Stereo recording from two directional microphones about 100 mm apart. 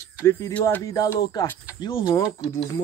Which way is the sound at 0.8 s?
30° left (ahead or behind).